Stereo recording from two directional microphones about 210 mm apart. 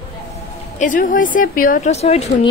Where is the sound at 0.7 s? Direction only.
40° left (ahead or behind).